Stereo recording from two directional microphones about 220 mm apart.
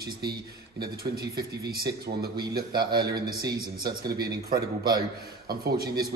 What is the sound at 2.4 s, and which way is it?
Speech, 45° right (ahead or behind).